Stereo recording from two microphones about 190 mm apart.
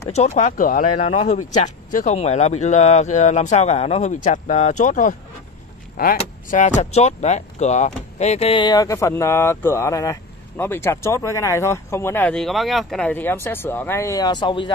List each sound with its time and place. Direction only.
0.1 s speech: 35° left (ahead or behind)
1.0 s speech: 35° left (ahead or behind)
6.1 s speech: 40° left (ahead or behind)